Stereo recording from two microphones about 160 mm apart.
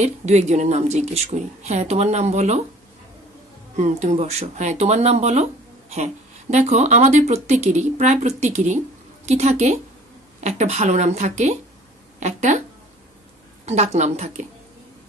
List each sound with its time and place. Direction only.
0.0 s speech: 45° right (ahead or behind)
3.7 s speech: 45° right (ahead or behind)
13.7 s speech: 45° right (ahead or behind)